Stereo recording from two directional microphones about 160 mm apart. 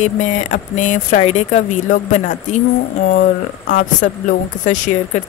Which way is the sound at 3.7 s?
50° left (ahead or behind).